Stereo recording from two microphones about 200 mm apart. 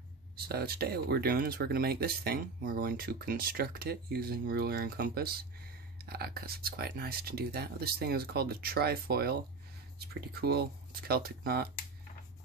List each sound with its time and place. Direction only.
0.5 s speech: 50° right (ahead or behind)